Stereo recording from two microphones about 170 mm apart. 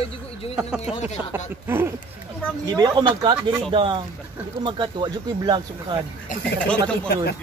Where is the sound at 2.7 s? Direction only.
25° right (ahead or behind).